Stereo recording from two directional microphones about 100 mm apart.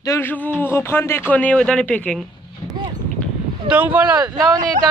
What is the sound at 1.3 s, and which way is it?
Speech, 15° left (ahead or behind).